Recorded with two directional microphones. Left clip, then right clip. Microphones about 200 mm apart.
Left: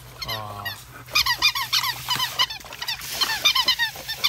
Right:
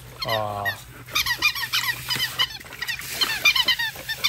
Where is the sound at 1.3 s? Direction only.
40° left (ahead or behind).